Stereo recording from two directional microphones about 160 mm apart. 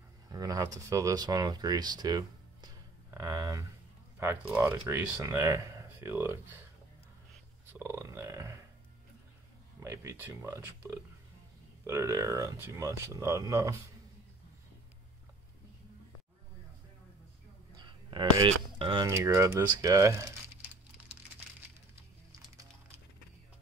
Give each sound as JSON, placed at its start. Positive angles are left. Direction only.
{"t": 0.3, "sound": "speech", "side_deg": -20}
{"t": 3.1, "sound": "a sound", "side_deg": -15}
{"t": 4.2, "sound": "speech", "side_deg": -15}
{"t": 7.8, "sound": "speech", "side_deg": -15}
{"t": 9.8, "sound": "speech", "side_deg": -15}
{"t": 11.8, "sound": "speech", "side_deg": -20}
{"t": 17.8, "sound": "speech", "side_deg": -30}
{"t": 19.0, "sound": "speech", "side_deg": -20}